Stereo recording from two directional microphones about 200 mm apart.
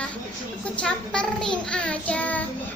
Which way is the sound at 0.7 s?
5° left (ahead or behind).